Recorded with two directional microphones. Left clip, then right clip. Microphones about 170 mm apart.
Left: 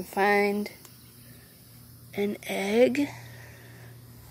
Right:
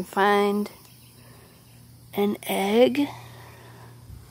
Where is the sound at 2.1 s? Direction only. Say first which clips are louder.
Right 5 dB; 25° right (ahead or behind).